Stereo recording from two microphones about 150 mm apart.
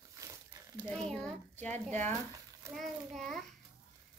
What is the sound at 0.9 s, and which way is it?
Child singing, 5° left (ahead or behind).